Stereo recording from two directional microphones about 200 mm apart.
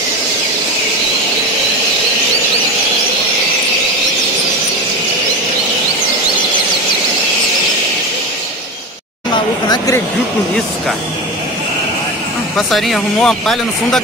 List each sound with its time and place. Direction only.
9.7 s speech: 15° left (ahead or behind)
12.5 s speech: centre (ahead or behind)